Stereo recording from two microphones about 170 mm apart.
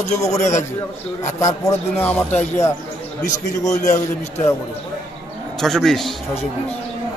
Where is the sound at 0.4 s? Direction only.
45° left (ahead or behind).